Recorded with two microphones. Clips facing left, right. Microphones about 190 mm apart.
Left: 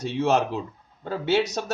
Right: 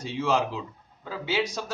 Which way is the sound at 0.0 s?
65° left (ahead or behind).